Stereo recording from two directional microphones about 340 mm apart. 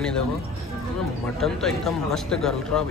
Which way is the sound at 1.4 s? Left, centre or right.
Centre.